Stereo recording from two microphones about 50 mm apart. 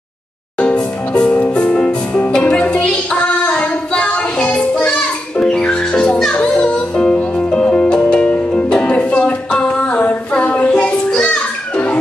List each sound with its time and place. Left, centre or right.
0.6 s music: left
3.4 s singing: left
4.1 s music: left